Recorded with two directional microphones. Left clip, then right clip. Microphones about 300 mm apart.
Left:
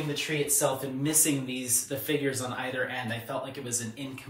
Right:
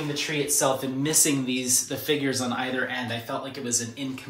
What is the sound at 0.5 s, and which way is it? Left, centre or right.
Speech, right.